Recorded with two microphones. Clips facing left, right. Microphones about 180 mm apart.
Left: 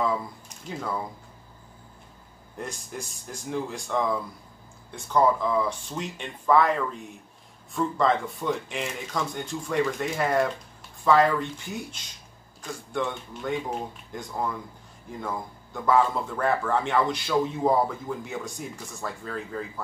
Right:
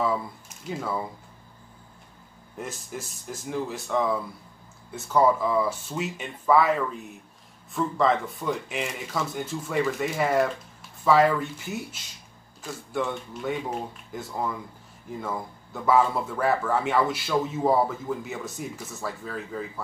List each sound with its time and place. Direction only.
0.7 s speech: 5° right (ahead or behind)
2.5 s speech: 5° right (ahead or behind)